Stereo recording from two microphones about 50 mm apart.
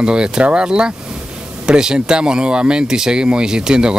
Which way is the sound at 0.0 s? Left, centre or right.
Centre.